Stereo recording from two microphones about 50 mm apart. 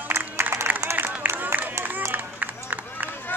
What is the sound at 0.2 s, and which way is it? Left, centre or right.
Music, right.